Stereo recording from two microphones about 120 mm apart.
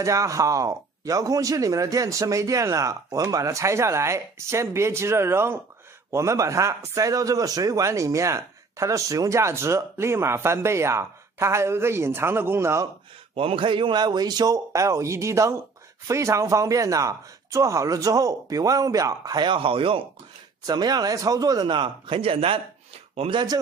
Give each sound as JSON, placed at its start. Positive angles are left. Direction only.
{"t": 0.0, "sound": "speech", "side_deg": -25}
{"t": 13.3, "sound": "speech", "side_deg": -50}
{"t": 20.6, "sound": "speech", "side_deg": -35}